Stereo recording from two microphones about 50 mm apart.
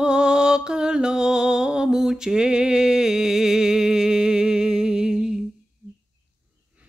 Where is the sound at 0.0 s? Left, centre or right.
Centre.